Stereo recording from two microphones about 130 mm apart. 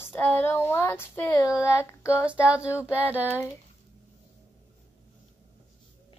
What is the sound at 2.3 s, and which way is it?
Speech, 10° right (ahead or behind).